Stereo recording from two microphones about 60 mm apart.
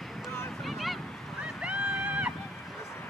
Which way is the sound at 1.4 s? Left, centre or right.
Centre.